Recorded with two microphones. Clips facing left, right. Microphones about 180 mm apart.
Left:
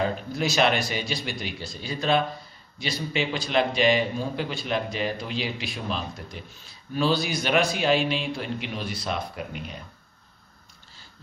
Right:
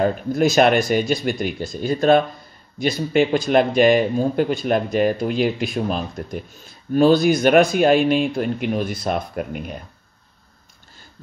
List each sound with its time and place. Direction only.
0.0 s a man's voice: 50° right (ahead or behind)